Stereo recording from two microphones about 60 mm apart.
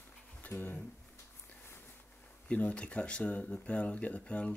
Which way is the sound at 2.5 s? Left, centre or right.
Centre.